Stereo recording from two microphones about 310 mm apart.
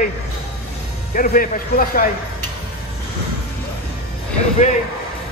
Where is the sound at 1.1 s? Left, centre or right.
Left.